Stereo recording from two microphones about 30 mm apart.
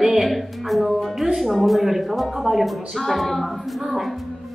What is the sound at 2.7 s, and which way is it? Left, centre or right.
A woman's voice, centre.